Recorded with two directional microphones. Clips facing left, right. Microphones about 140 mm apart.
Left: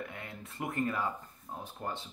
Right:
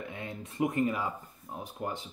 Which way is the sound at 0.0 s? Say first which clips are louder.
Right 3 dB; 20° right (ahead or behind).